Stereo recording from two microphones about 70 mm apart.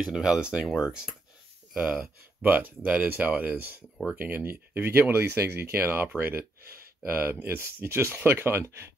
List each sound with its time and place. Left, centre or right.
0.0 s speech: centre
1.9 s speech: right